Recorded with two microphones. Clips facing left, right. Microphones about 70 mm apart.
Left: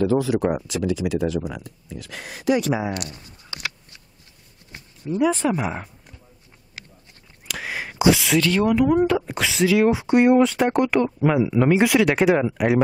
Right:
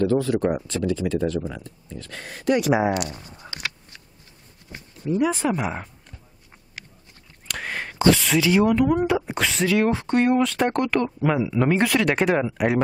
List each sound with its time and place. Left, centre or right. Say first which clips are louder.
0.0 s speech: left 1 dB; centre
3.1 s speech: right 3 dB; right
5.1 s speech: left 2 dB; centre
7.4 s whispering: even; centre
8.4 s speech: right 1 dB; centre
8.6 s speech: left 2 dB; centre
9.0 s speech: left 2 dB; centre
9.3 s speech: left 2 dB; centre